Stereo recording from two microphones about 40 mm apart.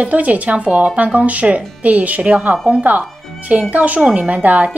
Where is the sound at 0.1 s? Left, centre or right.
Right.